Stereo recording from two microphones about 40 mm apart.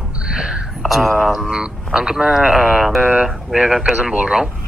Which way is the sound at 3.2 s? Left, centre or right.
Centre.